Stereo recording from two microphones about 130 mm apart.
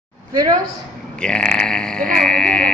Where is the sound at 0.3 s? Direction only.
30° right (ahead or behind).